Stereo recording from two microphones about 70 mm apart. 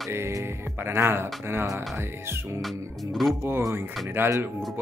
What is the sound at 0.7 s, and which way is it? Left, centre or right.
Speech, right.